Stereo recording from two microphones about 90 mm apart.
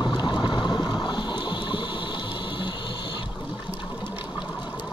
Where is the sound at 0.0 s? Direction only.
55° left (ahead or behind).